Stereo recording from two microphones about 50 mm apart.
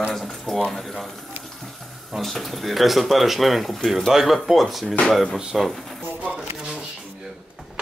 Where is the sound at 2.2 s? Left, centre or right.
Centre.